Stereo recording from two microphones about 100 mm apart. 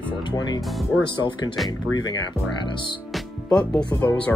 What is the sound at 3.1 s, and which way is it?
Speech, 10° left (ahead or behind).